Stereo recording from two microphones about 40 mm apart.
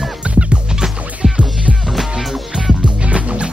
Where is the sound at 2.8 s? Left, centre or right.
Right.